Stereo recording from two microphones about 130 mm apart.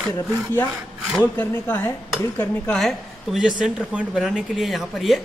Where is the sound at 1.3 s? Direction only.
15° left (ahead or behind).